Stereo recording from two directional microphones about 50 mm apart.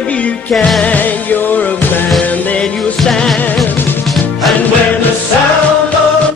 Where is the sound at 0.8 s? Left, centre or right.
Left.